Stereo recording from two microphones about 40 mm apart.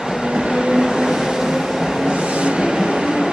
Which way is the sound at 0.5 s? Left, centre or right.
Centre.